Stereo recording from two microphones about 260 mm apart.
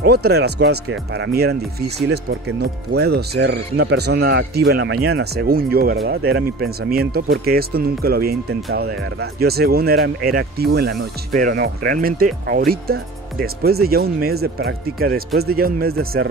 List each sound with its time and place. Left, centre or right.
0.0 s speech: right